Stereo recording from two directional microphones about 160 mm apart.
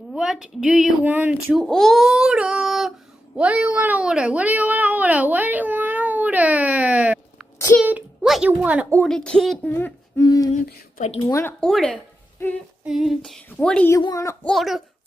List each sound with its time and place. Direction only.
0.1 s speech: 5° right (ahead or behind)
1.6 s a child's voice: 5° left (ahead or behind)
9.0 s speech: 5° left (ahead or behind)
9.7 s a sound: 10° left (ahead or behind)
10.2 s speech: 25° left (ahead or behind)
10.5 s speech: 45° left (ahead or behind)
11.2 s speech: 20° left (ahead or behind)
11.6 s speech: 5° left (ahead or behind)
12.8 s speech: centre (ahead or behind)
13.9 s speech: 20° left (ahead or behind)
14.4 s speech: centre (ahead or behind)